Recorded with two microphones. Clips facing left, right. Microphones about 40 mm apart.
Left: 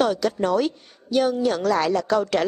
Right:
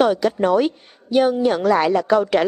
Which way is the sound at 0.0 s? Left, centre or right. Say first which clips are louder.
Right 4 dB; centre.